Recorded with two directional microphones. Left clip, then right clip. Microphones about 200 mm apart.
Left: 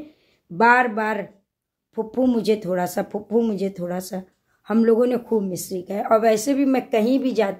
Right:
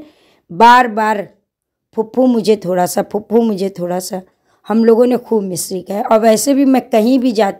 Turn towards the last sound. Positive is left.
turn(degrees=-45)  # may be behind; listen again after turning